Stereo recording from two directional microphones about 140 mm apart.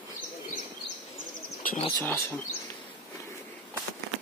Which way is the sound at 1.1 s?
90° left.